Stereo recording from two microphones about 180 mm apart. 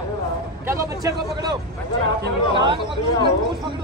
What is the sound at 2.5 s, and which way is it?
Speech, 25° right (ahead or behind).